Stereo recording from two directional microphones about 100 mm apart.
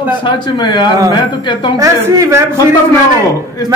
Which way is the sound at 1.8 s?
30° right (ahead or behind).